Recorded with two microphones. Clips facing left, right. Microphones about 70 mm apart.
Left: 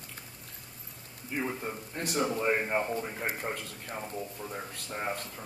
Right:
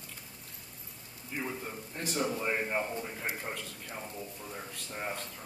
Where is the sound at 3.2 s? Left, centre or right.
Left.